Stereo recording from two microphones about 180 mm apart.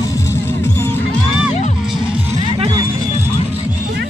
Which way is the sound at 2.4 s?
25° right (ahead or behind).